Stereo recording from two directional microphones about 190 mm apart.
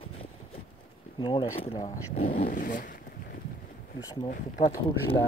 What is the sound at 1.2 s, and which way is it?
Speech, 25° left (ahead or behind).